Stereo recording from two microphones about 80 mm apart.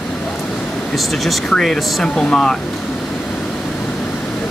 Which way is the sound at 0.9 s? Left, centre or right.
Centre.